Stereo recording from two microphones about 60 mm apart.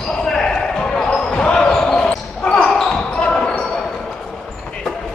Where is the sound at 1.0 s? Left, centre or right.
Centre.